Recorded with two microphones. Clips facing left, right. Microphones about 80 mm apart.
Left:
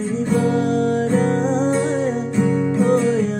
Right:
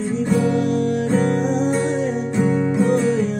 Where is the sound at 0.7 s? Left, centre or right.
Left.